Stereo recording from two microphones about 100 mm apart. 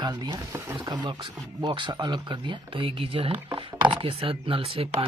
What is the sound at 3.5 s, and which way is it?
Speech, 55° right (ahead or behind).